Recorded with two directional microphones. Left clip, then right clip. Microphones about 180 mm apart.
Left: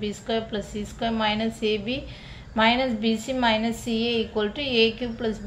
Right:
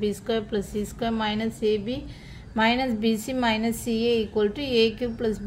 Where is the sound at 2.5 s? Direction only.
35° right (ahead or behind).